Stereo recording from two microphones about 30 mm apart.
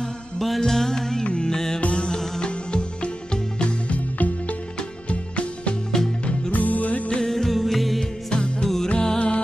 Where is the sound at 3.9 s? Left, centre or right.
Left.